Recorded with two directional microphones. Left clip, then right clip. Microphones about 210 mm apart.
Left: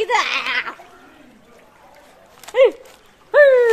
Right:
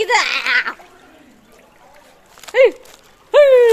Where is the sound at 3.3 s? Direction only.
25° right (ahead or behind).